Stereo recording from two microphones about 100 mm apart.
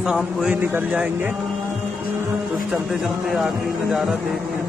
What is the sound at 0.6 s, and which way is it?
Speech, 15° right (ahead or behind).